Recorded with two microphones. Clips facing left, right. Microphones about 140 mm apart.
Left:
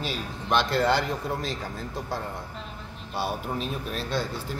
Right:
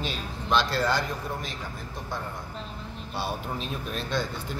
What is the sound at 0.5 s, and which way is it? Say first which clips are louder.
Speech: left 1 dB; 60° left (ahead or behind).